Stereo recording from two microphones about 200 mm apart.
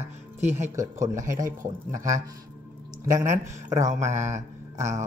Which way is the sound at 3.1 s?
15° right (ahead or behind).